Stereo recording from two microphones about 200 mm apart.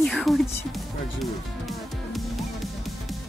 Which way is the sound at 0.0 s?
Centre (ahead or behind).